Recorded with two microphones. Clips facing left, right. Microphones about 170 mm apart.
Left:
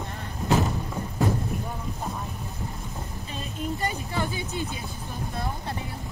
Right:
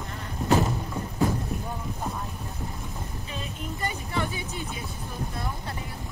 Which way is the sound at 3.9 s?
30° left (ahead or behind).